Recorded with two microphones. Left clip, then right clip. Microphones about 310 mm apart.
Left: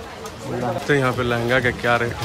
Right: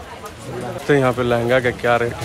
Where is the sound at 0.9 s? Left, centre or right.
Centre.